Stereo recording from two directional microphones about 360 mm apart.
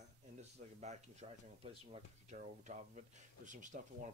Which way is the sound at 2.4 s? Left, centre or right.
Centre.